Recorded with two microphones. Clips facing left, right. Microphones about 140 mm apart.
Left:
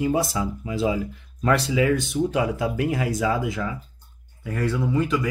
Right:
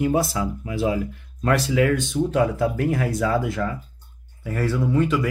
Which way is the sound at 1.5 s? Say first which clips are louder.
Right 1 dB; centre (ahead or behind).